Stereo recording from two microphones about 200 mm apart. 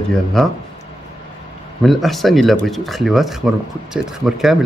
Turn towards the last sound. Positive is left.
turn(degrees=0)  # may be behind; listen again after turning